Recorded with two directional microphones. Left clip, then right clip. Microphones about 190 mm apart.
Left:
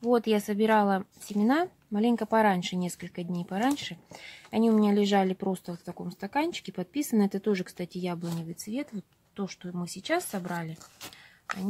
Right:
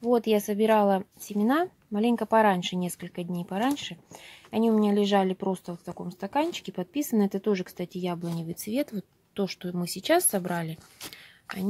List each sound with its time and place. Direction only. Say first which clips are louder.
0.0 s speech: right 2 dB; 5° right (ahead or behind)
8.6 s speech: right 8 dB; 35° right (ahead or behind)